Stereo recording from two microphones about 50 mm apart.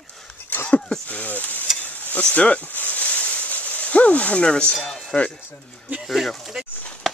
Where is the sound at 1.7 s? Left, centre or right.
Left.